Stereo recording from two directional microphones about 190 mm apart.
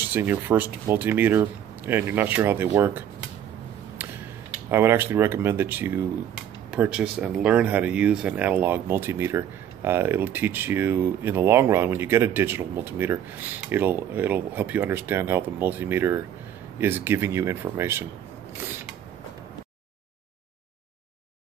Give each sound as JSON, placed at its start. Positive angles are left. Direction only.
{"t": 0.0, "sound": "speech", "side_deg": -10}
{"t": 4.6, "sound": "speech", "side_deg": -10}